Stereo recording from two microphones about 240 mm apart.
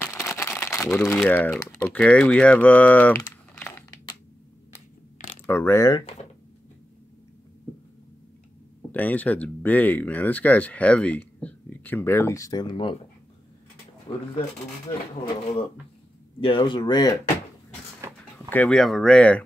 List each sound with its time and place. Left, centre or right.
0.0 s crumpling: centre
0.8 s speech: centre
3.2 s typing: centre
5.5 s speech: centre
8.9 s speech: centre
14.1 s speech: left
16.3 s speech: left
18.0 s a sound: centre
18.5 s speech: centre